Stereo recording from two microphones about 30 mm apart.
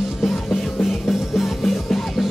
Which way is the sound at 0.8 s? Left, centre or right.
Centre.